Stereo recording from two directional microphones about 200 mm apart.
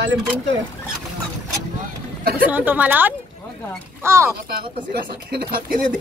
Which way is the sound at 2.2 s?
50° right (ahead or behind).